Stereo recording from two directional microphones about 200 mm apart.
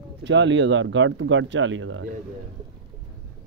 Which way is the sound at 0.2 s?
65° right (ahead or behind).